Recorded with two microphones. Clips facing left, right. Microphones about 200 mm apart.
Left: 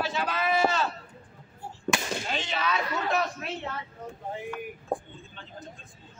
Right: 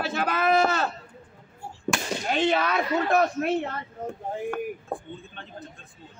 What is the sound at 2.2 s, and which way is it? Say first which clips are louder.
Speech: right 7 dB; 55° right (ahead or behind).